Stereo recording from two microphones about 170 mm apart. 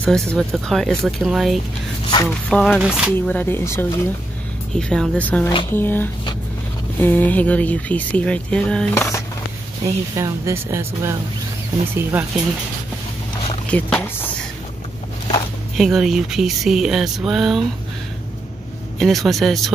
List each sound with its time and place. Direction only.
0.0 s speech: 5° left (ahead or behind)
3.2 s speech: 10° left (ahead or behind)
10.1 s speech: 20° right (ahead or behind)
13.7 s speech: 5° left (ahead or behind)
15.8 s speech: centre (ahead or behind)
18.9 s speech: centre (ahead or behind)